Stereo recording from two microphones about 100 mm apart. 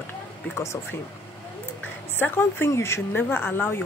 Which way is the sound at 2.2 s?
20° left (ahead or behind).